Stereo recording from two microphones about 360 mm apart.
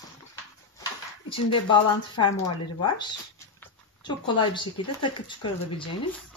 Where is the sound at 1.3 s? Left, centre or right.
Centre.